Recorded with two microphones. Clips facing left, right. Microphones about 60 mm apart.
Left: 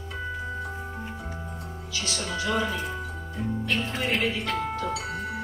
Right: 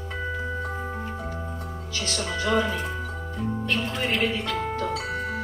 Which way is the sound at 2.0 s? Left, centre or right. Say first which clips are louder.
Right 3 dB; right.